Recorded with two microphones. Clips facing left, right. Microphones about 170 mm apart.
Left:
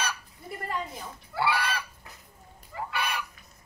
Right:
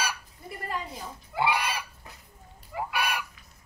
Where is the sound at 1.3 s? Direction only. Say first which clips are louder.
Right 1 dB; 15° right (ahead or behind).